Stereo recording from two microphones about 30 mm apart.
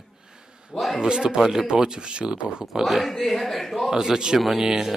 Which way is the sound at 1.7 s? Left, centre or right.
Right.